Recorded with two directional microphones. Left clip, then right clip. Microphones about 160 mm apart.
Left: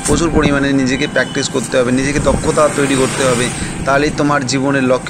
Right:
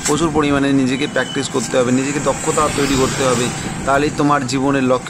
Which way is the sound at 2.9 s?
90° right.